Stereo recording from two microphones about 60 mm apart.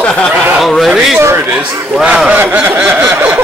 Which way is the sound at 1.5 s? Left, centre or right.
Centre.